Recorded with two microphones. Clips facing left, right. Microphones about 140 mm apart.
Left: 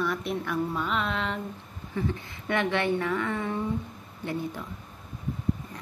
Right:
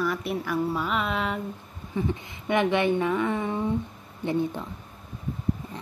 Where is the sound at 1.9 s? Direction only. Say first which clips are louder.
Right 2 dB; 15° right (ahead or behind).